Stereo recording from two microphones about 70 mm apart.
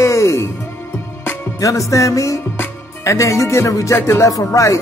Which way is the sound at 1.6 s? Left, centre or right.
Left.